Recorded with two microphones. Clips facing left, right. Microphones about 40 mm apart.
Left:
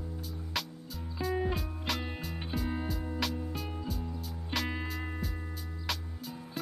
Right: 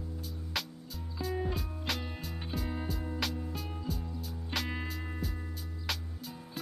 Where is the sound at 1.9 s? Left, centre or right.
Centre.